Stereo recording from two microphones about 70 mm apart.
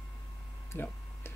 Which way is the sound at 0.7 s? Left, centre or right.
Left.